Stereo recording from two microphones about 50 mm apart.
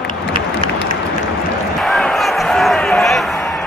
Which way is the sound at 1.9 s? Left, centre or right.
Centre.